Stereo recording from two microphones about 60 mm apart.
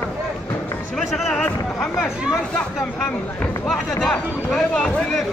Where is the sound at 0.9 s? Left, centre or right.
Centre.